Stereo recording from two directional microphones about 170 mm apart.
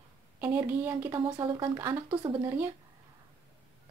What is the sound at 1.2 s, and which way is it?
Speech, 30° right (ahead or behind).